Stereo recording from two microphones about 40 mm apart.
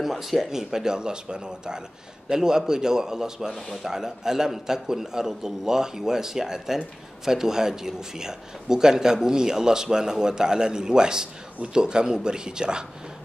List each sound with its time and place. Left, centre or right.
0.0 s a man's voice: centre